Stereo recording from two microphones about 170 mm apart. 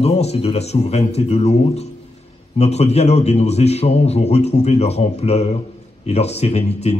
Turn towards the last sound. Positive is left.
turn(degrees=40)  # may be behind; listen again after turning